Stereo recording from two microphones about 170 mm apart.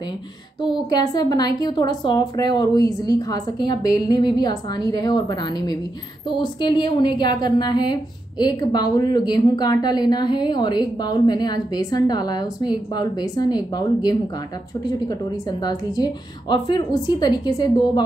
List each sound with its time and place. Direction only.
0.6 s a woman's voice: 25° left (ahead or behind)
15.6 s a woman's voice: 25° left (ahead or behind)